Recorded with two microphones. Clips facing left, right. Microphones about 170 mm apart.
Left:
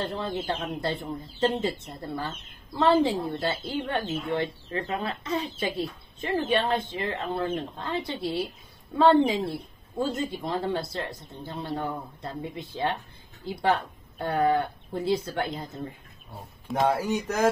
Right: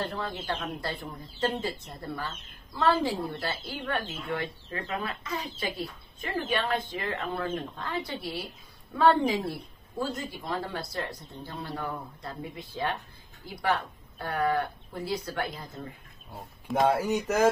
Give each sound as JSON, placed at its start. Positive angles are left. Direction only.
{"t": 0.0, "sound": "speech", "side_deg": 25}
{"t": 16.6, "sound": "speech", "side_deg": 0}